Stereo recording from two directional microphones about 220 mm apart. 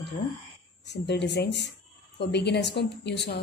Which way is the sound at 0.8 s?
50° left (ahead or behind).